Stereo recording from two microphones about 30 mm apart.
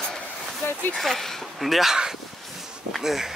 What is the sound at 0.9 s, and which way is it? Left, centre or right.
Speech, centre.